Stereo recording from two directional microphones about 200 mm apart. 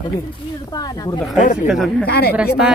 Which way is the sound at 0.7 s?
20° left (ahead or behind).